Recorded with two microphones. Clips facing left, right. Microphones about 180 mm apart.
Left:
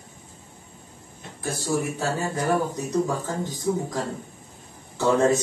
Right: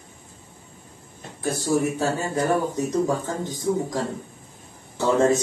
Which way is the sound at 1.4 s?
20° right (ahead or behind).